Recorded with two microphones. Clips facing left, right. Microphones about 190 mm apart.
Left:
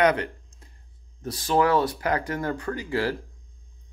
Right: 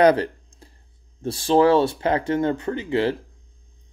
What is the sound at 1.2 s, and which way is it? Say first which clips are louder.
Speech: right 6 dB; 30° right (ahead or behind).